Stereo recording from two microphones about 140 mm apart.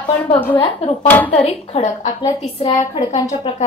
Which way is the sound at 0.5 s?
45° left (ahead or behind).